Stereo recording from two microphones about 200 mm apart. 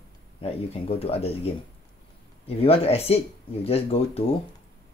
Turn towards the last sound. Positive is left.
turn(degrees=30)  # may be behind; listen again after turning